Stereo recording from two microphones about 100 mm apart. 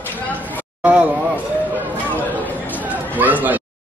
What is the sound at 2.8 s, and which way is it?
Chatter, 15° right (ahead or behind).